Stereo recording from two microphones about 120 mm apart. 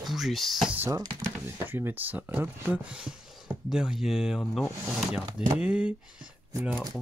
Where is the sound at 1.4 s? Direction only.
20° right (ahead or behind).